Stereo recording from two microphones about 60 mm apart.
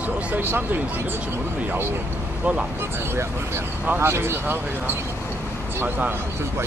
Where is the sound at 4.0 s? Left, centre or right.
Right.